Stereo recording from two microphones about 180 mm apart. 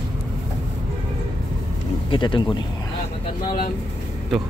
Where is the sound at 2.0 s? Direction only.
25° left (ahead or behind).